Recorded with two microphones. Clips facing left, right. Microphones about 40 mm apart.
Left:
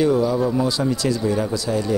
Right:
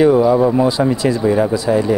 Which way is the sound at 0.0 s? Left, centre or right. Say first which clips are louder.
Right 7 dB; right.